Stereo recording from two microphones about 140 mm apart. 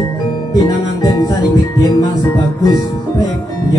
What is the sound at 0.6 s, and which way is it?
Music, 30° left (ahead or behind).